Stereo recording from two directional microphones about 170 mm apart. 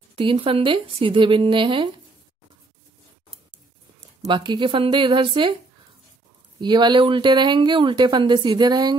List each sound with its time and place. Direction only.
0.1 s speech: 30° right (ahead or behind)
4.3 s speech: 25° right (ahead or behind)
6.6 s speech: 25° right (ahead or behind)